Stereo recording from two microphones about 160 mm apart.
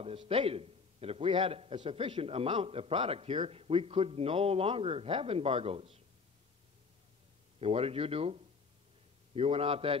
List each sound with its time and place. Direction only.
0.0 s a man's voice: 35° right (ahead or behind)
7.6 s a man's voice: 40° right (ahead or behind)